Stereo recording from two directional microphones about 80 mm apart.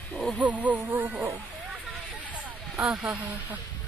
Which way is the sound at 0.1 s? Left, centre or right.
Centre.